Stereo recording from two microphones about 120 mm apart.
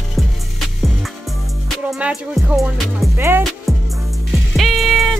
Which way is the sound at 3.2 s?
20° right (ahead or behind).